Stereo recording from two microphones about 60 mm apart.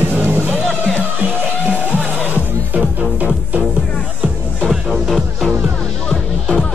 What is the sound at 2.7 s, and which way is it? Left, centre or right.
Music, right.